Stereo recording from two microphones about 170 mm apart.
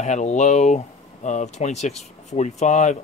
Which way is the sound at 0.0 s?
45° left (ahead or behind).